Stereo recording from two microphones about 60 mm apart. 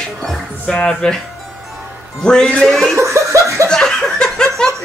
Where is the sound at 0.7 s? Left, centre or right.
Centre.